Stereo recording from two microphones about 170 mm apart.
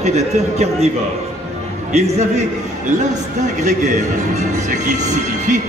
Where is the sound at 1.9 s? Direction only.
40° right (ahead or behind).